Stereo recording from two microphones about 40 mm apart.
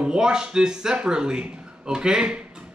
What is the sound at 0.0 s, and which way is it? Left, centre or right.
Speech, centre.